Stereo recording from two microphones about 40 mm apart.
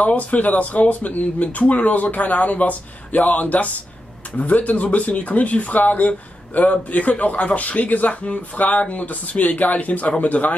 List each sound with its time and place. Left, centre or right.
0.0 s speech: left